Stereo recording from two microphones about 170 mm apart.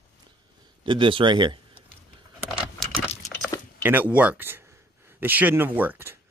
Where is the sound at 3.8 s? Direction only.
10° right (ahead or behind).